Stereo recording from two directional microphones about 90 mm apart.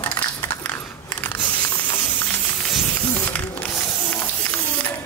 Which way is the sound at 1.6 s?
20° left (ahead or behind).